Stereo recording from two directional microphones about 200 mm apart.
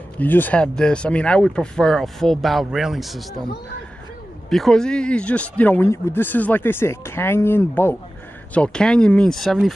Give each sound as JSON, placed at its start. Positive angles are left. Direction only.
{"t": 0.2, "sound": "speech", "side_deg": 10}
{"t": 4.5, "sound": "speech", "side_deg": 0}